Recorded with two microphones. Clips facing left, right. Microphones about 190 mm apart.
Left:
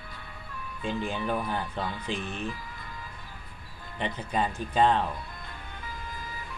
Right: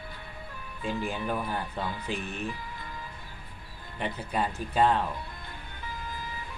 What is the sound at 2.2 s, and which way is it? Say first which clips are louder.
Speech: left 1 dB; 30° left (ahead or behind).